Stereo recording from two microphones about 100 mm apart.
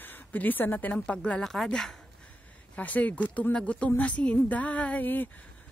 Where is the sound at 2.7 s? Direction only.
15° left (ahead or behind).